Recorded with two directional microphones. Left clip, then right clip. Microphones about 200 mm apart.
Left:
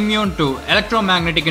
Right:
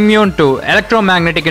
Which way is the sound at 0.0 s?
40° right (ahead or behind).